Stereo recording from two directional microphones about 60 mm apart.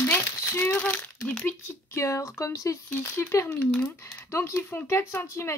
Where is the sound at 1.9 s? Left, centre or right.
Left.